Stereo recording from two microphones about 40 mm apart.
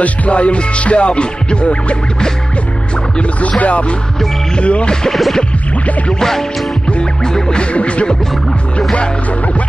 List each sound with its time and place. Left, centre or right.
0.0 s music: left
3.2 s music: left
5.1 s music: centre
7.7 s music: left